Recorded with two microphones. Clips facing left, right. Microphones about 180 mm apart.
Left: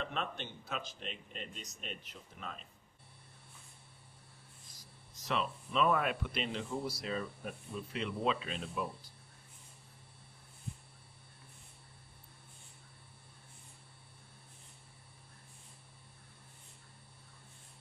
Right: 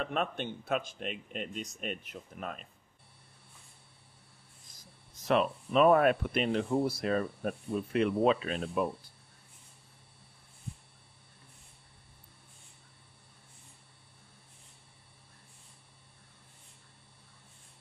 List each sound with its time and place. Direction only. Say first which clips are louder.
0.0 s speech: right 7 dB; 55° right (ahead or behind)
5.2 s speech: right 8 dB; 55° right (ahead or behind)